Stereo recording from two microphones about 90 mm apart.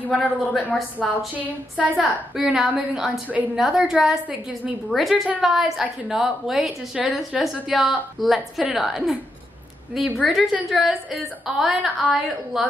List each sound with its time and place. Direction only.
0.2 s a woman's voice: 15° left (ahead or behind)
1.0 s a woman's voice: 15° right (ahead or behind)
2.0 s a woman's voice: 5° right (ahead or behind)